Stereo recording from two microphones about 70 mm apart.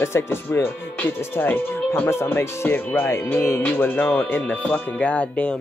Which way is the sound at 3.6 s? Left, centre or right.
Left.